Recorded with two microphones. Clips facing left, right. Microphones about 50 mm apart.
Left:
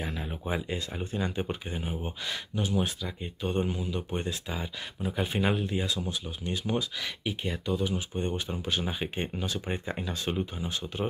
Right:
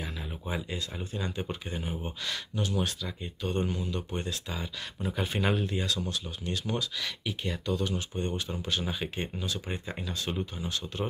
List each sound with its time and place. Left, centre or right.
0.0 s a sound: left
0.3 s speech: left
5.0 s speech: centre